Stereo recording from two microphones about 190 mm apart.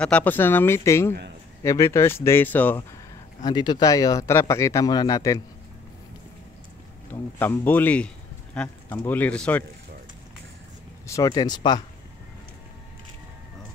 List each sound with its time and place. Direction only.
0.0 s speech: 10° left (ahead or behind)
3.4 s speech: 20° left (ahead or behind)
7.1 s speech: 10° left (ahead or behind)
11.1 s speech: 15° left (ahead or behind)